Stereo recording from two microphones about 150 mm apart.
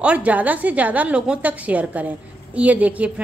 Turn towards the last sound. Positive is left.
turn(degrees=-10)  # may be behind; listen again after turning